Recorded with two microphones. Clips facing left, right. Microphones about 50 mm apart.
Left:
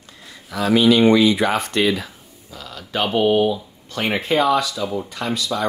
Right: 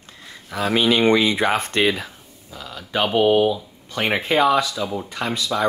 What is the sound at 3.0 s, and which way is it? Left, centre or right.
Speech, centre.